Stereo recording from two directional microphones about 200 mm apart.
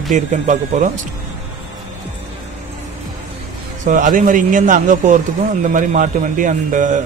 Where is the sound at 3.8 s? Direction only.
40° right (ahead or behind).